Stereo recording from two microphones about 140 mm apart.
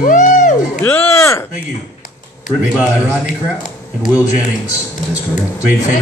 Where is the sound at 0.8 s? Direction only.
15° left (ahead or behind).